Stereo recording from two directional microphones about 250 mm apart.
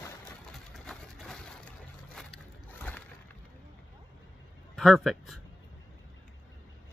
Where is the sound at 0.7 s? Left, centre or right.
Centre.